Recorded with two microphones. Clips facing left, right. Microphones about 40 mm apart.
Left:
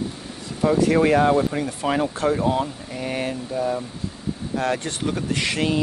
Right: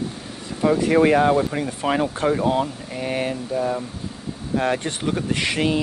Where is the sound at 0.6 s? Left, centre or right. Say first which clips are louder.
Right 1 dB; right.